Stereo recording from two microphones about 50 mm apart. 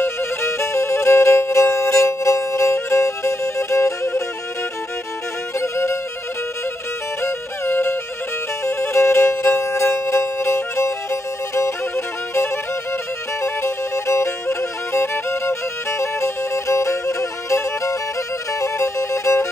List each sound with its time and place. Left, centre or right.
0.0 s music: left
5.6 s music: left
7.2 s music: left
8.6 s music: left
9.7 s music: left
13.4 s music: left